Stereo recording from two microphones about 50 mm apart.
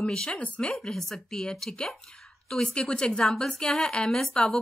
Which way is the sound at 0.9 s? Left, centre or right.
Centre.